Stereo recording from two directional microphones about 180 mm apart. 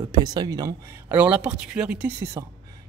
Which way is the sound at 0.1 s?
20° right (ahead or behind).